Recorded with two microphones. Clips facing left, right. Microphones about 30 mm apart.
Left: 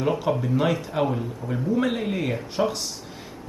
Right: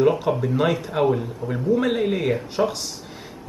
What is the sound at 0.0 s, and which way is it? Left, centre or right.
Speech, centre.